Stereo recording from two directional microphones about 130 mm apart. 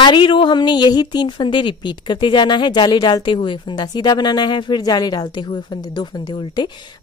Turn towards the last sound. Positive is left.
turn(degrees=35)  # may be behind; listen again after turning